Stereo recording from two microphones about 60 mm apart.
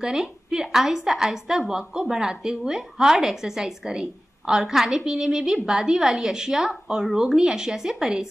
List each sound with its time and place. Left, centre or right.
0.0 s speech: centre